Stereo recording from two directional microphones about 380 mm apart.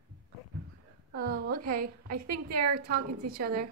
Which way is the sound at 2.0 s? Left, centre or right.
Right.